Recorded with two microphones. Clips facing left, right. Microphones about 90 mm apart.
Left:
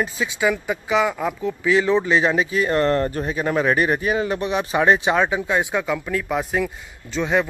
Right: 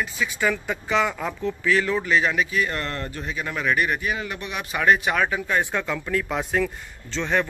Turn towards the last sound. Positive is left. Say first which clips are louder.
# left 3 dB
turn(degrees=10)  # may be behind; listen again after turning